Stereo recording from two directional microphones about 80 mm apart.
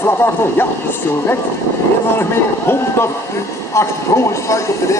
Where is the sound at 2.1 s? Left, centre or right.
Left.